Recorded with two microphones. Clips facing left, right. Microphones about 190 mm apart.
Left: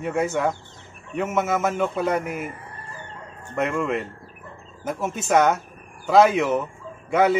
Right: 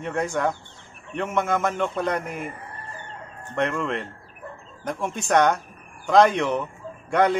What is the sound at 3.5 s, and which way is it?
A man's voice, 5° left (ahead or behind).